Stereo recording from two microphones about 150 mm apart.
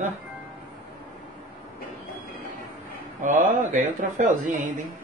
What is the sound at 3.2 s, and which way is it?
A woman's voice, 60° right (ahead or behind).